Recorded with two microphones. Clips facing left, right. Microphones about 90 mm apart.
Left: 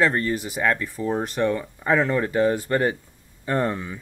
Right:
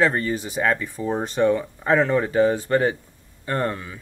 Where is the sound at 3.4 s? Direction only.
10° left (ahead or behind).